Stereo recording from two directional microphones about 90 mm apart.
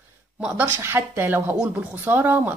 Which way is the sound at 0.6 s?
30° right (ahead or behind).